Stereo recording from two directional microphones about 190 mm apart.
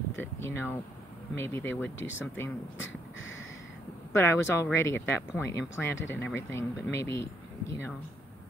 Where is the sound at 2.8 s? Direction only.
90° left.